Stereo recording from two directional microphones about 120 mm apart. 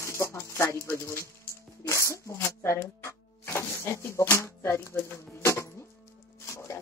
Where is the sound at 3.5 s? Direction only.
20° left (ahead or behind).